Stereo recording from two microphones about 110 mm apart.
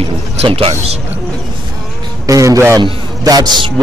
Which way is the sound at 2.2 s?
30° right (ahead or behind).